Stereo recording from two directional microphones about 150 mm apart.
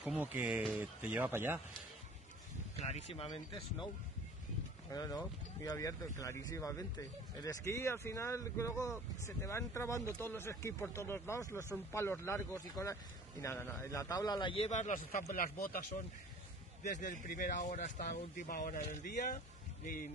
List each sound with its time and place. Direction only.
0.0 s speech: 10° right (ahead or behind)
2.8 s speech: 45° left (ahead or behind)
4.9 s speech: 25° left (ahead or behind)
14.7 s speech: 55° left (ahead or behind); by 15.8 s 70° left (ahead or behind)
16.8 s speech: 55° left (ahead or behind)